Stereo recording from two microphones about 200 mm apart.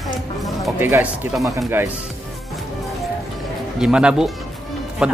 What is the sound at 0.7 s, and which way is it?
Speech, 10° right (ahead or behind).